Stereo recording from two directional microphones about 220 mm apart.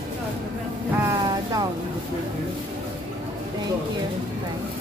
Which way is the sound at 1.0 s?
15° right (ahead or behind).